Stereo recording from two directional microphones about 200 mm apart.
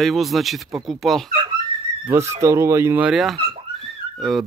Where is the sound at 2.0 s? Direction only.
15° right (ahead or behind).